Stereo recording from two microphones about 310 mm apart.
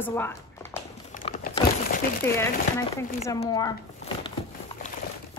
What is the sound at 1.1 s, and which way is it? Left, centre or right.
Crumpling, left.